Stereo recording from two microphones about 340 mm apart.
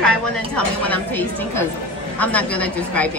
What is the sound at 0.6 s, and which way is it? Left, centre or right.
A woman's voice, centre.